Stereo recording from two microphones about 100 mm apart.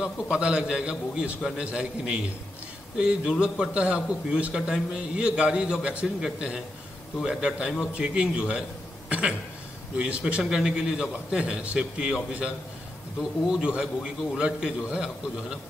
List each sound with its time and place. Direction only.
0.0 s a man's voice: 10° right (ahead or behind)
9.9 s a man's voice: 10° right (ahead or behind)